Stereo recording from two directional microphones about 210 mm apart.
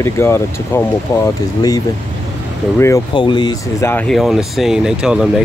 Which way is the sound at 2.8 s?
20° left (ahead or behind).